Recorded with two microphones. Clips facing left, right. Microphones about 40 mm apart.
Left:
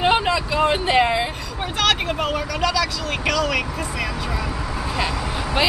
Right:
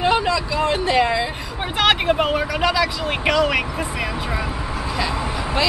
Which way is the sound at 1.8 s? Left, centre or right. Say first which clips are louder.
Right 4 dB; right.